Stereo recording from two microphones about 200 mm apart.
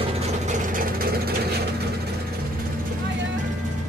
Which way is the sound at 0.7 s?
45° right (ahead or behind).